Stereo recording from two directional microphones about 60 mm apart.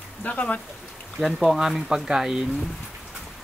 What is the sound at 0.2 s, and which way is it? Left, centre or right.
Speech, left.